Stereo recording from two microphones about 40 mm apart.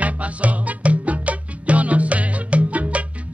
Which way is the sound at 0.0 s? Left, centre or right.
Right.